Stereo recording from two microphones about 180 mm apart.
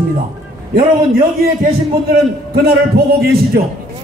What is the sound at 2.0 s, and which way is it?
A man's voice, 55° right (ahead or behind).